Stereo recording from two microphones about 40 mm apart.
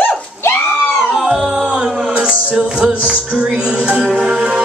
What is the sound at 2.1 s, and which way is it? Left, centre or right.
Music, right.